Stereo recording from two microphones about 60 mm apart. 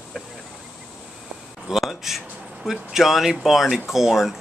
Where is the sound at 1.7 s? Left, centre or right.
Centre.